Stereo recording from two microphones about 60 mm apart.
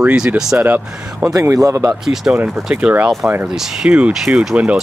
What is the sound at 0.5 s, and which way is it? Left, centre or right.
Speech, right.